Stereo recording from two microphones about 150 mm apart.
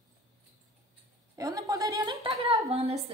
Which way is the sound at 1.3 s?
25° right (ahead or behind).